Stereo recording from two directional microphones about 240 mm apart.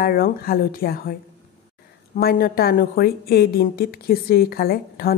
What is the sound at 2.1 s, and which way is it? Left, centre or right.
A woman's voice, left.